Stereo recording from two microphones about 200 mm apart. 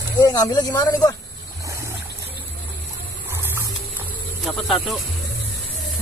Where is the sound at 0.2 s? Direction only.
20° left (ahead or behind).